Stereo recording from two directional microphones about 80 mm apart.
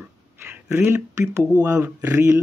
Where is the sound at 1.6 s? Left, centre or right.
Right.